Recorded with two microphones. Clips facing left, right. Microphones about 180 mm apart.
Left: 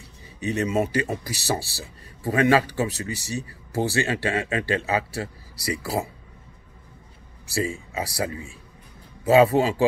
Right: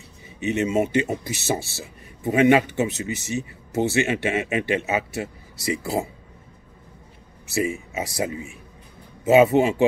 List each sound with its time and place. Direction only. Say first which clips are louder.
0.4 s speech: right 2 dB; 20° right (ahead or behind)
7.4 s speech: right 2 dB; 20° right (ahead or behind)